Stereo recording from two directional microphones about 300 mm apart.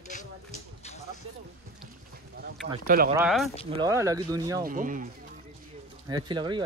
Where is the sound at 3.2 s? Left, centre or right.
Centre.